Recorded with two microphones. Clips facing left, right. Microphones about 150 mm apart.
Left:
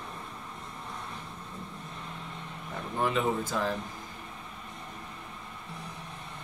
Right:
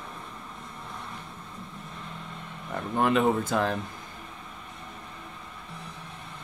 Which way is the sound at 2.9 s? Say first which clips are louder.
Right 5 dB; 60° right (ahead or behind).